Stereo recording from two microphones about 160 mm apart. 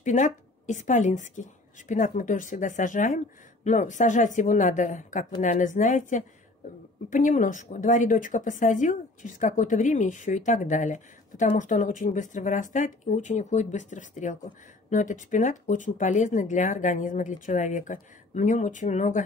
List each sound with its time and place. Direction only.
0.0 s speech: 50° left (ahead or behind)